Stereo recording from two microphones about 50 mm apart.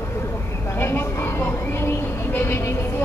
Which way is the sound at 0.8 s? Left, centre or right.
Left.